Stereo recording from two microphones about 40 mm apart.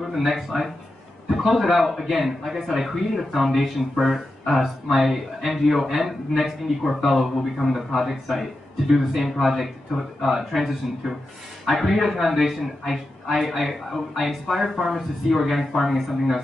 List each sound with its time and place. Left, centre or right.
0.1 s speech: centre
9.9 s speech: right
10.2 s speech: centre